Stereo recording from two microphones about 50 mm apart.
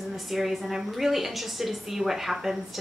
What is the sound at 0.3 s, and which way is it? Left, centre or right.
A woman's voice, centre.